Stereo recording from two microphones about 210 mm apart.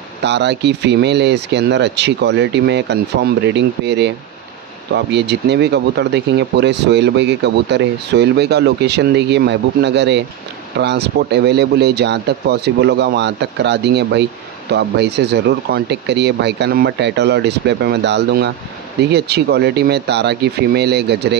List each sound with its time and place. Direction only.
0.2 s speech: 55° right (ahead or behind)